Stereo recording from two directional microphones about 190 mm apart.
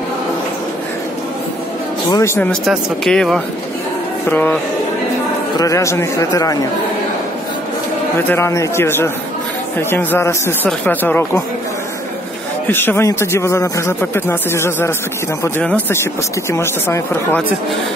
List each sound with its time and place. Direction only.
2.0 s speech: 15° left (ahead or behind)
2.6 s speech: centre (ahead or behind)
5.6 s speech: 15° left (ahead or behind)
8.2 s speech: 10° left (ahead or behind)
12.6 s speech: 10° left (ahead or behind)